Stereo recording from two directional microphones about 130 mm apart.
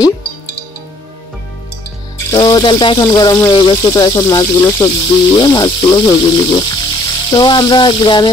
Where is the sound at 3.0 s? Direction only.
25° left (ahead or behind).